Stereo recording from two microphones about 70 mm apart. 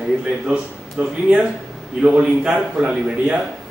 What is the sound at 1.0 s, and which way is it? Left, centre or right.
A man's voice, centre.